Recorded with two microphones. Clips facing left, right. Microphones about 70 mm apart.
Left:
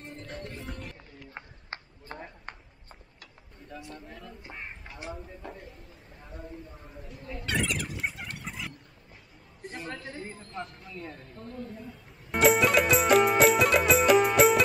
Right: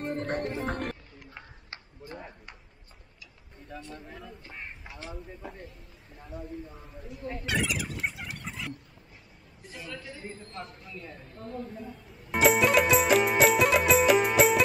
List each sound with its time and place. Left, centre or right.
0.0 s music: right
1.3 s a sound: left
3.6 s speech: centre
7.4 s a sound: centre
9.6 s a woman's voice: left
10.2 s speech: centre
11.4 s speech: centre
11.8 s music: centre